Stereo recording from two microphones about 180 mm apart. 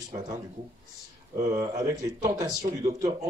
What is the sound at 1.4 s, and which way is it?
Speech, 20° right (ahead or behind).